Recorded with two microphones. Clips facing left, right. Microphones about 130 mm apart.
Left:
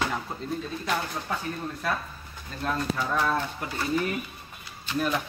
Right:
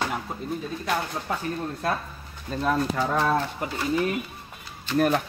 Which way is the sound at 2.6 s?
75° right (ahead or behind).